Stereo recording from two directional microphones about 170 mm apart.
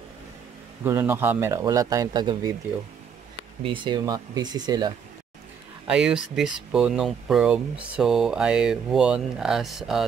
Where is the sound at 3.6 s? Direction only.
30° right (ahead or behind).